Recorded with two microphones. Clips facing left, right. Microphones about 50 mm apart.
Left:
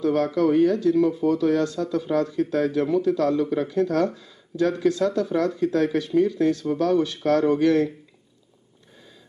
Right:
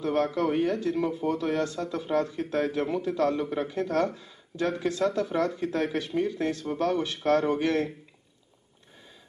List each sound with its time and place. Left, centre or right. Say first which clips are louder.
0.0 s speech: left 5 dB; right